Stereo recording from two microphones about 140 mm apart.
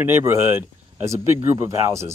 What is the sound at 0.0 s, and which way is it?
Speech, 15° right (ahead or behind).